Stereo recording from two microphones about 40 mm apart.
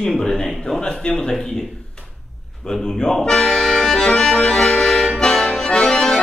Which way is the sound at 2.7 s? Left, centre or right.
Centre.